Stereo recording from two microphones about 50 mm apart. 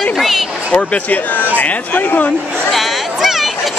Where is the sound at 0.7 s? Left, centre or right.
Left.